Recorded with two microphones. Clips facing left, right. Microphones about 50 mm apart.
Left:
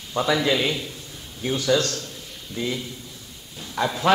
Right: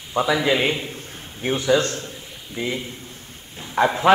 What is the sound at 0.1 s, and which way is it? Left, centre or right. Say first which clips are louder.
Speech: right 2 dB; centre.